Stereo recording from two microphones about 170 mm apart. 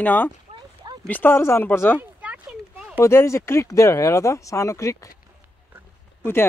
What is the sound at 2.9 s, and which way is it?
Speech, 15° left (ahead or behind).